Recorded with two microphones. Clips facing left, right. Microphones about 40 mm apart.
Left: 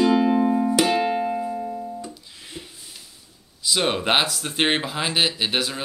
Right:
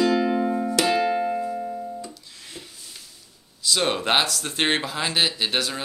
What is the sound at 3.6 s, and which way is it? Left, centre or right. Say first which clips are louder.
Speech: left 1 dB; centre.